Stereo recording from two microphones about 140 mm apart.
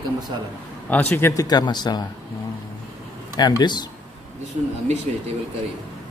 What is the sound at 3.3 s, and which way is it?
Speech, 30° left (ahead or behind).